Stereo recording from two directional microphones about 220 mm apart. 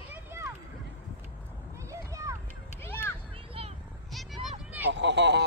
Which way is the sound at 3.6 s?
25° right (ahead or behind).